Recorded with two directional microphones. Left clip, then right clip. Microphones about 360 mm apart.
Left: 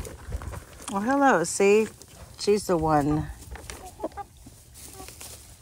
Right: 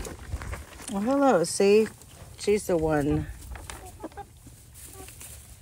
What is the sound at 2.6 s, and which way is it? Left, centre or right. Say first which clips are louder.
Speech: left 2 dB; left.